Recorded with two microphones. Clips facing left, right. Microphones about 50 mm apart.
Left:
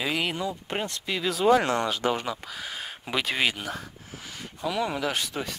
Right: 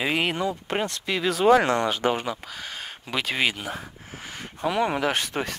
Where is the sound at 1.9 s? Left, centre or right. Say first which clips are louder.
Right 2 dB; right.